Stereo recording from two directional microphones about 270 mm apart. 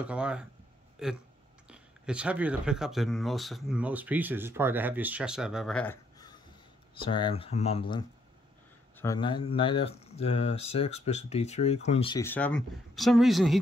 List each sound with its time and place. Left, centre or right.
0.0 s speech: centre